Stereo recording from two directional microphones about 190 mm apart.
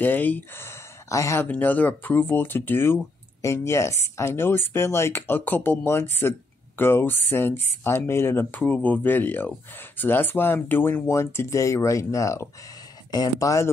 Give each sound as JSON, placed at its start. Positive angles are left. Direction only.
{"t": 0.0, "sound": "speech", "side_deg": 10}